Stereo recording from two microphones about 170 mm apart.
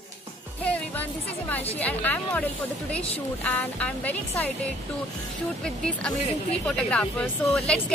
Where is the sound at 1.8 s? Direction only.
10° left (ahead or behind).